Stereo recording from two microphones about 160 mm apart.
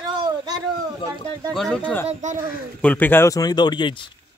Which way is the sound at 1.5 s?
5° left (ahead or behind).